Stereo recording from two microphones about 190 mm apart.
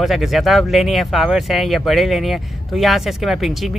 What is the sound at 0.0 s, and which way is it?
Speech, centre (ahead or behind).